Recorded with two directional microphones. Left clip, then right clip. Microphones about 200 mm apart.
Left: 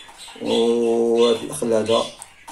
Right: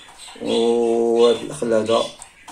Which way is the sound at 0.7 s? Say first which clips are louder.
Right 2 dB; centre (ahead or behind).